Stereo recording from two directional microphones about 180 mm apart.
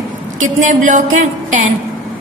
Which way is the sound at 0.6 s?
45° right (ahead or behind).